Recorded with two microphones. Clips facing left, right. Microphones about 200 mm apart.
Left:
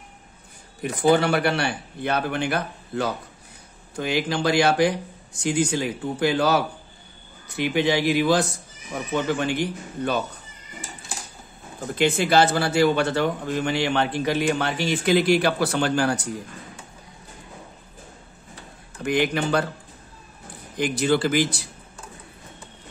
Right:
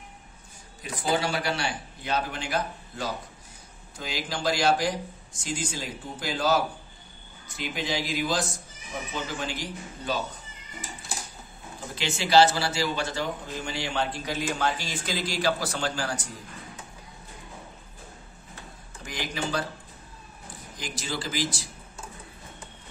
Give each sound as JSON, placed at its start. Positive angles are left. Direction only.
{"t": 0.8, "sound": "a man's voice", "side_deg": 60}
{"t": 11.9, "sound": "a man's voice", "side_deg": 55}
{"t": 19.0, "sound": "a man's voice", "side_deg": 60}
{"t": 20.7, "sound": "a man's voice", "side_deg": 60}